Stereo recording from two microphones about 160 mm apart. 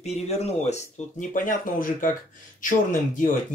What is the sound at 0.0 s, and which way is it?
Speech, 40° left (ahead or behind).